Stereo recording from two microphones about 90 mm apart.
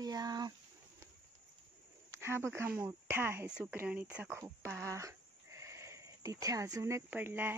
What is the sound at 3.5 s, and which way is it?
Speech, 10° right (ahead or behind).